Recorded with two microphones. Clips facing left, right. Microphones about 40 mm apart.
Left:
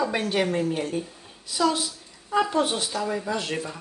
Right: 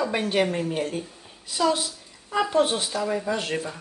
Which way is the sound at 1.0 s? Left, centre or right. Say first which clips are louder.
Left 2 dB; centre.